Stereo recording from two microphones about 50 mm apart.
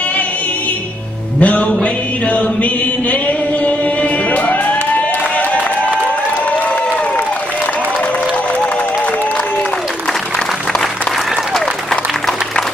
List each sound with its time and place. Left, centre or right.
1.4 s music: left
1.7 s chant: left
4.3 s music: left